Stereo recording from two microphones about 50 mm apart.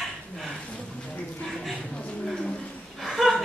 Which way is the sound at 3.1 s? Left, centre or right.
Centre.